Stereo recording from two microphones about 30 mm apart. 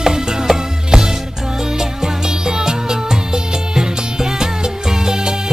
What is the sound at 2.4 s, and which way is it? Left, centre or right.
Music, right.